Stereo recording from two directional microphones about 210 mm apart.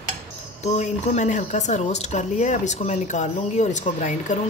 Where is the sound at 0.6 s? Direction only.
35° left (ahead or behind).